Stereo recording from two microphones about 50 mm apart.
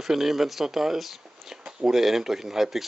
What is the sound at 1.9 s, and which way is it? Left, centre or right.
Speech, centre.